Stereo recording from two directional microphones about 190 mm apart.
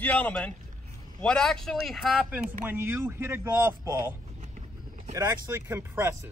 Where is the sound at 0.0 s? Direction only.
5° left (ahead or behind); by 4.1 s 10° right (ahead or behind).